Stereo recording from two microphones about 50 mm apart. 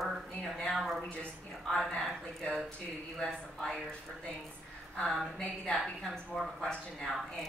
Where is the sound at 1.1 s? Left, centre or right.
Left.